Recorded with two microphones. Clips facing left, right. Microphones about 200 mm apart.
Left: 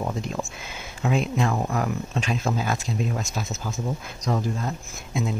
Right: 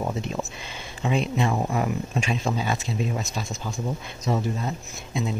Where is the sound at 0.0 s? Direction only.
Centre (ahead or behind).